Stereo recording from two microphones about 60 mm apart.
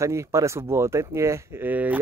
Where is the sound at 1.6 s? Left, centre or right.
Right.